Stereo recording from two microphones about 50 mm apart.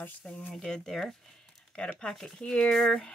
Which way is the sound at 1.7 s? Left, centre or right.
Left.